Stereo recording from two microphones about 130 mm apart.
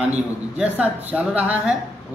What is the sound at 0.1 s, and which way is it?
Speech, 10° right (ahead or behind).